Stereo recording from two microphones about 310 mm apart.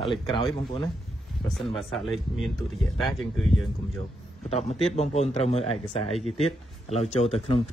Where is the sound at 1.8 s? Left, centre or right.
Centre.